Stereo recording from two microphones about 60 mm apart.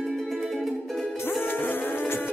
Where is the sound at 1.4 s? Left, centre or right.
Left.